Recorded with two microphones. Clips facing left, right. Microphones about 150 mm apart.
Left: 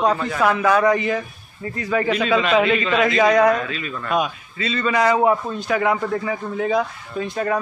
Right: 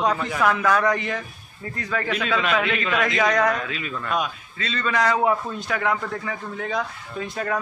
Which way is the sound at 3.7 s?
15° right (ahead or behind).